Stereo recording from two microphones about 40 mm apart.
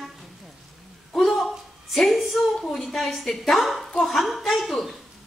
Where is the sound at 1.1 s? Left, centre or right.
Centre.